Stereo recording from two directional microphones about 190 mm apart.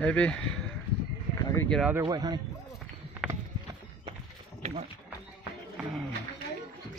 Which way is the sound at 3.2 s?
Centre (ahead or behind).